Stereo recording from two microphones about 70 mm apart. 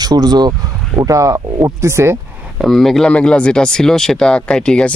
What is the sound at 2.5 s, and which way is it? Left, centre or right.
Speech, centre.